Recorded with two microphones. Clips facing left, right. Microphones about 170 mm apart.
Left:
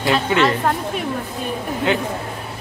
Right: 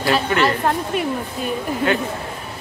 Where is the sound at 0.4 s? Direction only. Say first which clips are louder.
Left 1 dB; centre (ahead or behind).